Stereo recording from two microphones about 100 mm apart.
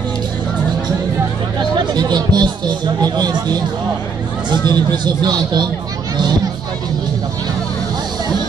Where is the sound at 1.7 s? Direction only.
45° right (ahead or behind).